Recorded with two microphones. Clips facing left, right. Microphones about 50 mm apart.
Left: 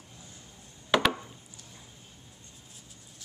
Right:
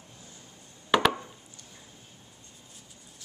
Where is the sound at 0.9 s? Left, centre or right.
Centre.